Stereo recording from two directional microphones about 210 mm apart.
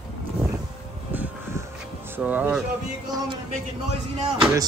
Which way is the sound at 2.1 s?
5° right (ahead or behind).